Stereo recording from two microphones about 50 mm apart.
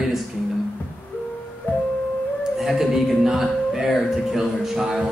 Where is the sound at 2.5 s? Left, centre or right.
Centre.